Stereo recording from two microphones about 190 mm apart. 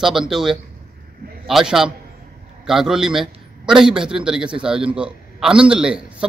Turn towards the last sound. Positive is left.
turn(degrees=-5)  # may be behind; listen again after turning